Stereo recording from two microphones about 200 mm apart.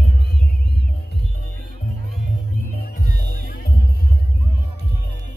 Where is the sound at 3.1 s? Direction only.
45° left (ahead or behind).